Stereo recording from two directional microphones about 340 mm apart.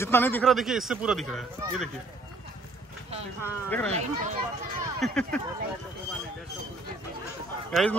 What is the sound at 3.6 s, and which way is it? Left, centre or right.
Speech, centre.